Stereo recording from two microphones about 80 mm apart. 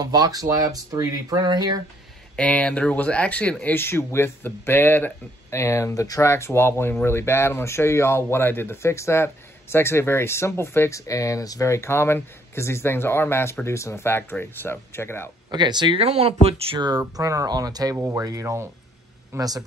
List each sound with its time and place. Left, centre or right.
0.0 s speech: right
2.3 s speech: centre
3.6 s speech: left
5.6 s speech: left
10.9 s speech: left
15.5 s speech: right
17.2 s speech: right
17.9 s speech: right
19.3 s speech: right